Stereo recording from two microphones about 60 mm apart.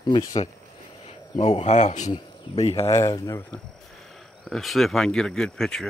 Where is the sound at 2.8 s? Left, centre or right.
Left.